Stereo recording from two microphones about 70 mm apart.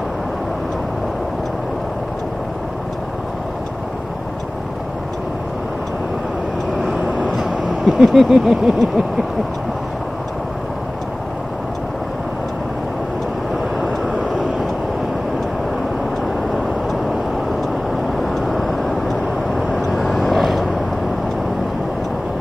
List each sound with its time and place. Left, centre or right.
6.9 s vehicle: centre
8.0 s vehicle: centre
13.8 s vehicle: centre
18.2 s vehicle: centre